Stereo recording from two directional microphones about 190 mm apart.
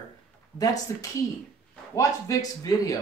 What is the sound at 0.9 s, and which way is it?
Speech, 15° left (ahead or behind).